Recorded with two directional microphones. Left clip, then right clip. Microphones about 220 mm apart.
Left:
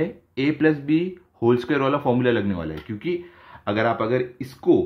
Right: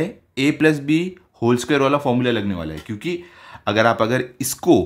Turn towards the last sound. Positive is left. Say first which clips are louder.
# right 3 dB
turn(degrees=-35)  # may be behind; listen again after turning